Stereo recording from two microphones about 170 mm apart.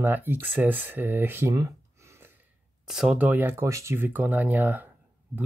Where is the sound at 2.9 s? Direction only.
5° right (ahead or behind).